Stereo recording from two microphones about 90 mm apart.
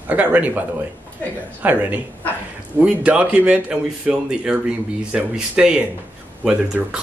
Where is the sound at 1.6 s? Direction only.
15° right (ahead or behind).